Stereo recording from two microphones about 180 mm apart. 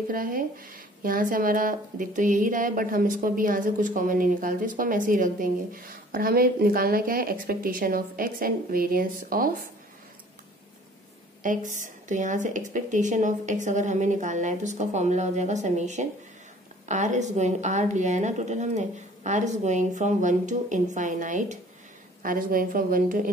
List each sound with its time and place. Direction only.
0.1 s speech: 50° right (ahead or behind)
11.4 s a woman's voice: 45° right (ahead or behind)